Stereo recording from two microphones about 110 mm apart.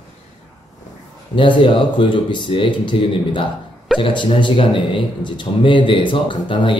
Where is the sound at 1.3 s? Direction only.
50° left (ahead or behind).